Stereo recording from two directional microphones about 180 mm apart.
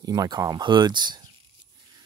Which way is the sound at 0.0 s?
20° right (ahead or behind).